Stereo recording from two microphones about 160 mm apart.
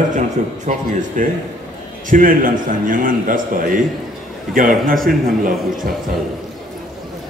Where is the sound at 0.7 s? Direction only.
50° right (ahead or behind).